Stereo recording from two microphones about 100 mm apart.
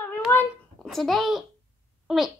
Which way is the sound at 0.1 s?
25° left (ahead or behind).